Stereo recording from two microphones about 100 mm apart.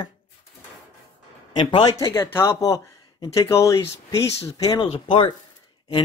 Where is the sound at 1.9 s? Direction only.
30° left (ahead or behind).